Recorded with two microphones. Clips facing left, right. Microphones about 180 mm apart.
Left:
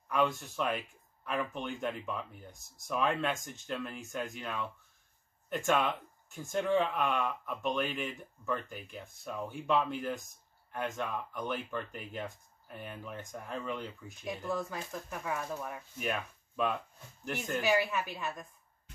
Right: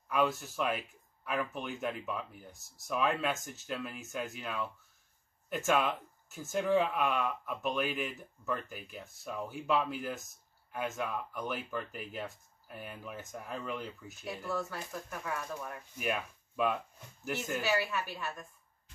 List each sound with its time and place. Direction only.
0.1 s speech: 5° right (ahead or behind)
14.5 s a woman's voice: 15° left (ahead or behind)
16.0 s speech: 5° right (ahead or behind)
17.6 s a woman's voice: 15° left (ahead or behind)